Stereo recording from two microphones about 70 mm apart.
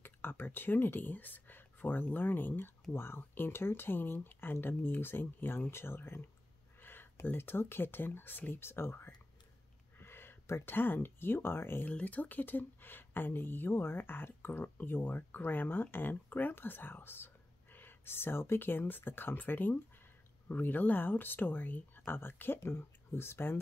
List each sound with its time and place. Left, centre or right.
0.0 s speech: left
11.9 s speech: left